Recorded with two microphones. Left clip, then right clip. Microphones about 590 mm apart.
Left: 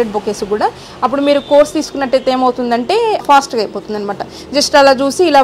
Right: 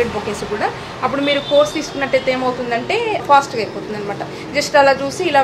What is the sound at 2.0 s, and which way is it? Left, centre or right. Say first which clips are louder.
A woman's voice: left 4 dB; left.